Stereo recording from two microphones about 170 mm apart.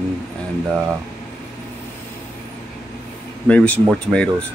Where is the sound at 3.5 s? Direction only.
10° left (ahead or behind).